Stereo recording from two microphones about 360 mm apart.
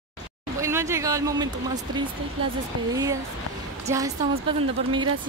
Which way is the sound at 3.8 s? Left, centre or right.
Centre.